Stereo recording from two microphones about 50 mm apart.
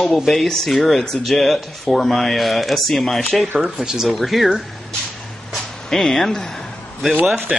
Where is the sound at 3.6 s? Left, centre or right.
Centre.